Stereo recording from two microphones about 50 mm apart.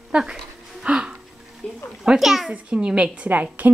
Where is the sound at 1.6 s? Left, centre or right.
Centre.